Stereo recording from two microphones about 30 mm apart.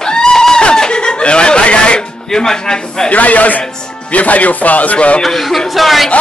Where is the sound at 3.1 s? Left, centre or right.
Left.